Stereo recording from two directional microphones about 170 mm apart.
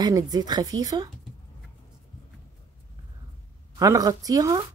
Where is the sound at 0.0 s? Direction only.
25° right (ahead or behind).